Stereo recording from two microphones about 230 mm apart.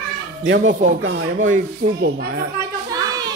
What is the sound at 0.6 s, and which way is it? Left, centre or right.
Speech, right.